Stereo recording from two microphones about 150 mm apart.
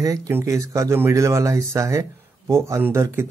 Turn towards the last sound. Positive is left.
turn(degrees=-15)  # may be behind; listen again after turning